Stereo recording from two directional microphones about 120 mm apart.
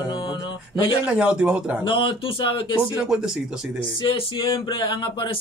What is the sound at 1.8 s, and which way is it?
Speech, 45° left (ahead or behind).